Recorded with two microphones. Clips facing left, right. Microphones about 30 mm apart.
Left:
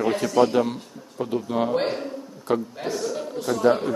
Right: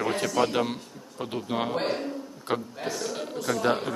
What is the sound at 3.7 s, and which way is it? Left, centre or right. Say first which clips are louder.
Speech: left 8 dB; centre.